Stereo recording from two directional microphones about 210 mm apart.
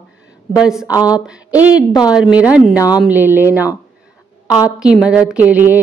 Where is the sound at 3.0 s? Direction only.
10° right (ahead or behind).